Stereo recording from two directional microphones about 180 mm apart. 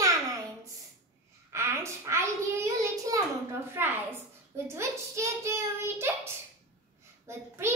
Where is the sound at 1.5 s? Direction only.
15° right (ahead or behind).